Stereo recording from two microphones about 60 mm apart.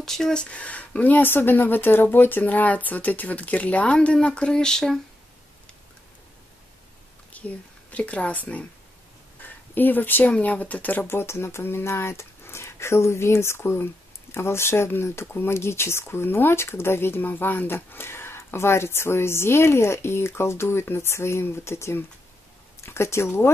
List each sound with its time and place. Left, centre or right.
0.0 s speech: centre
7.3 s speech: left
9.4 s a sound: left
10.3 s speech: left
11.1 s speech: left